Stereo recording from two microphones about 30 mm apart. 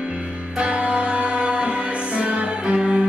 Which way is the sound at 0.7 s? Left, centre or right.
Right.